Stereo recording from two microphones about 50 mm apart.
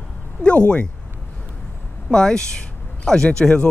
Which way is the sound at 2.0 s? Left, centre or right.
Centre.